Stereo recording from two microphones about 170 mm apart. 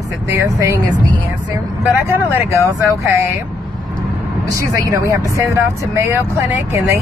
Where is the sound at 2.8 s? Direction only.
15° right (ahead or behind).